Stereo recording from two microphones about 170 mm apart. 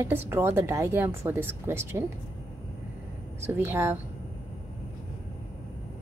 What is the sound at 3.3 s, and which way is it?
Speech, 15° right (ahead or behind).